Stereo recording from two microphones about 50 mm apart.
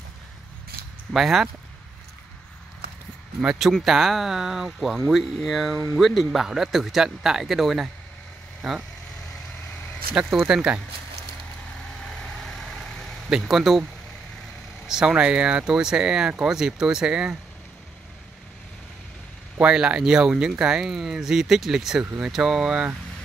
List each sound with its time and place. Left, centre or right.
1.1 s speech: centre
3.8 s speech: centre
10.3 s speech: centre
12.0 s vehicle: centre
13.4 s speech: centre
14.9 s speech: centre
19.6 s speech: centre